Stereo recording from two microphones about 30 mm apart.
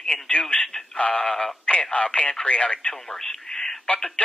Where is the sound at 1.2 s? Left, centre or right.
Centre.